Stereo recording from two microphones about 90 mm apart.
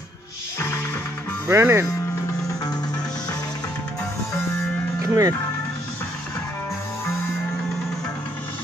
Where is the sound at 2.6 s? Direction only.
45° left (ahead or behind).